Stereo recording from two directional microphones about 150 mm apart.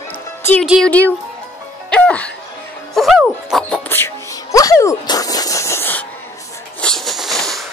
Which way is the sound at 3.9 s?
20° left (ahead or behind).